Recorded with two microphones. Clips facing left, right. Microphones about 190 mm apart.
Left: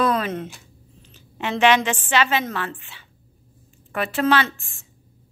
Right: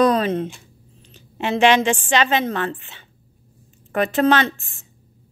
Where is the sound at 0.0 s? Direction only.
35° right (ahead or behind).